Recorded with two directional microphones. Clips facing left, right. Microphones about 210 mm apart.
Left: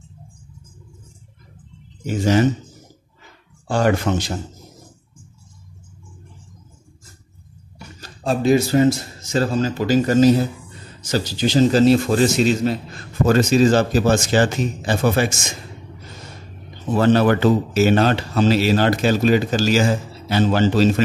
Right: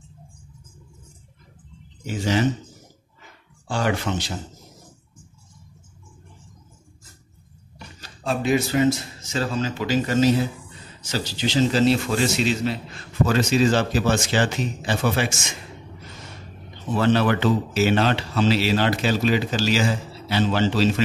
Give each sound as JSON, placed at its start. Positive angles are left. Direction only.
{"t": 2.0, "sound": "a man's voice", "side_deg": 45}
{"t": 3.6, "sound": "a man's voice", "side_deg": 45}
{"t": 8.0, "sound": "a man's voice", "side_deg": 40}
{"t": 16.9, "sound": "a man's voice", "side_deg": 45}